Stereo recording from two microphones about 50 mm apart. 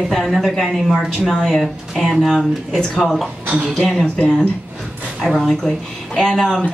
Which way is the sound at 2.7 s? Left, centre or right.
Centre.